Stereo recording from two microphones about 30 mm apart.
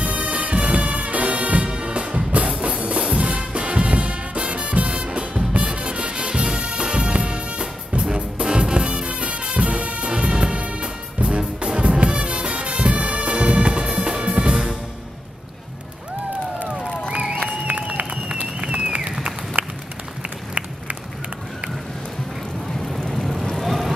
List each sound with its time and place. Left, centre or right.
0.0 s music: right
1.7 s music: right
9.6 s music: right
12.8 s bagpipes: right
14.2 s music: right
14.5 s music: centre
17.1 s a sound: right
17.7 s music: right
18.6 s a sound: right
19.6 s a sound: right
23.1 s vehicle: centre
23.6 s boat: centre